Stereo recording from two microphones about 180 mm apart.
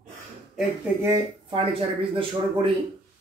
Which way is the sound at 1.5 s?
30° right (ahead or behind).